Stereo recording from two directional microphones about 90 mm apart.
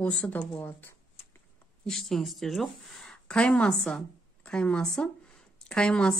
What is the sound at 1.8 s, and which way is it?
Speech, 5° left (ahead or behind).